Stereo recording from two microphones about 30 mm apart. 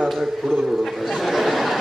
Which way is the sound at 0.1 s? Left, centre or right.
Centre.